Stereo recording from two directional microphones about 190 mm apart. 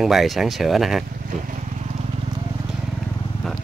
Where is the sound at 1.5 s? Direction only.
35° right (ahead or behind).